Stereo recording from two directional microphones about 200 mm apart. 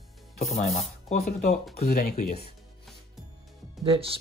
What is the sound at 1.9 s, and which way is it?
Speech, 50° left (ahead or behind).